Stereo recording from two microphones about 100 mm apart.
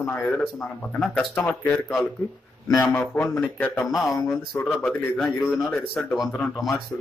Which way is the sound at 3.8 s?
Centre (ahead or behind).